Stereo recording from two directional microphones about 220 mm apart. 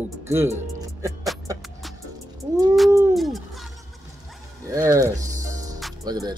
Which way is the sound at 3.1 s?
Centre (ahead or behind).